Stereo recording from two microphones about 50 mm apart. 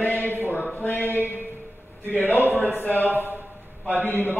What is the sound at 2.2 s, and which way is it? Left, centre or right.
Speech, left.